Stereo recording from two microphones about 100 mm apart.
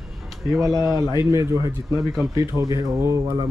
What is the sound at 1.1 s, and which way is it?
Speech, 30° right (ahead or behind).